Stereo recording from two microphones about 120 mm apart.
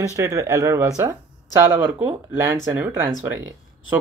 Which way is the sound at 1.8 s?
15° right (ahead or behind).